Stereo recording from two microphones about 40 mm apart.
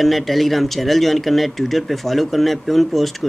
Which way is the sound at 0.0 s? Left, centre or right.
Centre.